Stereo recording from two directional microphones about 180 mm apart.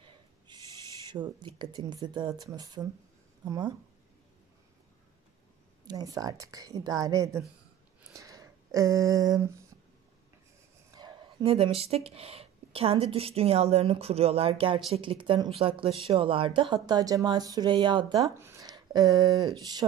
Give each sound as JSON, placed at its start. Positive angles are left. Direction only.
{"t": 0.5, "sound": "owl", "side_deg": -25}
{"t": 1.0, "sound": "speech", "side_deg": -25}
{"t": 5.9, "sound": "speech", "side_deg": -20}
{"t": 8.0, "sound": "a sound", "side_deg": -15}
{"t": 11.0, "sound": "speech", "side_deg": -30}